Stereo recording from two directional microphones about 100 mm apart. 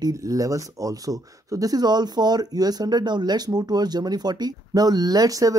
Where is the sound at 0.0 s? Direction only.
35° right (ahead or behind).